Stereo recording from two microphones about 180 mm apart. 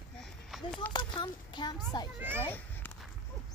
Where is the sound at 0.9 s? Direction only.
25° left (ahead or behind).